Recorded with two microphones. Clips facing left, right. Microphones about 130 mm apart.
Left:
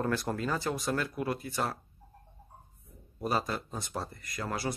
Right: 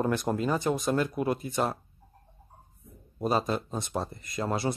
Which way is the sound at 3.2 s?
20° right (ahead or behind).